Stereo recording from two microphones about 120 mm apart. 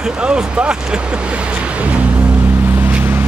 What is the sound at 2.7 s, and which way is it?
Boat, 15° right (ahead or behind).